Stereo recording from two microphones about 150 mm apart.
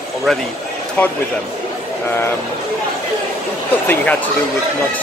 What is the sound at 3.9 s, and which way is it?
Speech, 10° left (ahead or behind).